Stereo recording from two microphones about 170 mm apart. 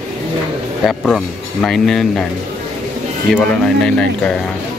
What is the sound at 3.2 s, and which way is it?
Speech, 5° left (ahead or behind).